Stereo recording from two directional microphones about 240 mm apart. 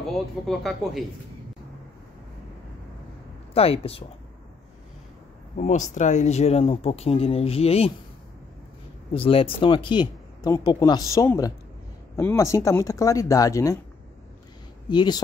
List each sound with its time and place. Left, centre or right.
0.5 s speech: centre
3.5 s speech: left
5.6 s speech: left
9.1 s speech: left
14.9 s speech: centre